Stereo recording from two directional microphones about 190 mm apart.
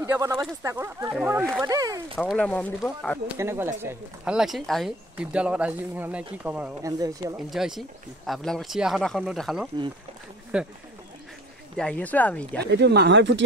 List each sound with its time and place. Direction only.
0.0 s speech: 15° right (ahead or behind)
1.6 s speech: 20° right (ahead or behind)
2.1 s speech: 5° left (ahead or behind)
3.3 s speech: 15° right (ahead or behind)
7.5 s speech: centre (ahead or behind)
11.7 s speech: 5° left (ahead or behind)
12.7 s speech: 60° right (ahead or behind)